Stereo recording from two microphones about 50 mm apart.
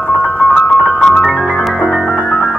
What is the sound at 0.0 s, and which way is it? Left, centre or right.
Music, left.